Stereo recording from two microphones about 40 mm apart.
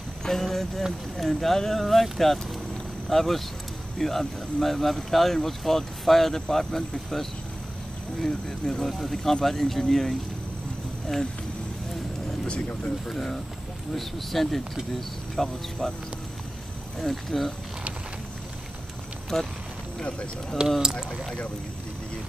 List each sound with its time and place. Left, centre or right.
0.2 s speech: centre
8.3 s speech: centre
13.1 s speech: centre
17.0 s speech: centre
19.3 s speech: centre
20.0 s speech: left
20.6 s speech: centre